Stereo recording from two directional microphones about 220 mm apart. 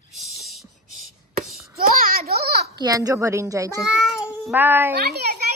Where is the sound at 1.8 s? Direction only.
40° right (ahead or behind).